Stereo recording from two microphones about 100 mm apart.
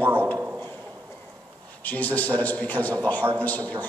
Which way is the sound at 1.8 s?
15° left (ahead or behind).